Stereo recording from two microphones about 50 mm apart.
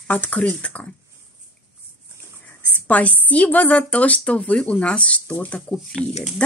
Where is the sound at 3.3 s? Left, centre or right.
Left.